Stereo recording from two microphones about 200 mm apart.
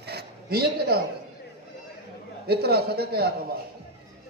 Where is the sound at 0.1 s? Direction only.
50° right (ahead or behind).